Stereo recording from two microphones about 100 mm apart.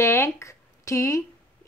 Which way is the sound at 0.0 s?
25° left (ahead or behind).